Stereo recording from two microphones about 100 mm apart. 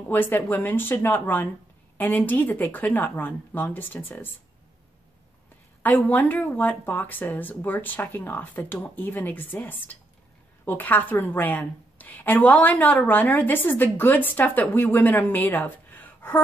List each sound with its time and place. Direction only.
0.1 s a woman's voice: 20° left (ahead or behind)
6.0 s a woman's voice: 15° left (ahead or behind)